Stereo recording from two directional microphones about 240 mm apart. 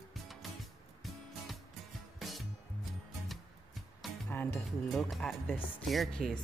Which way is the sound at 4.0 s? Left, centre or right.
Centre.